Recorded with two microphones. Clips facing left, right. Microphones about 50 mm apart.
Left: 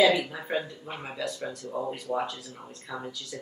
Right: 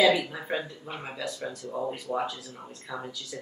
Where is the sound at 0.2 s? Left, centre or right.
Centre.